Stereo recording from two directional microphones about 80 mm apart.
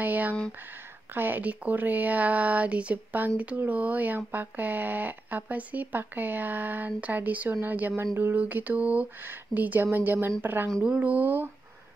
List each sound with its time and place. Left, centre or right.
0.0 s speech: right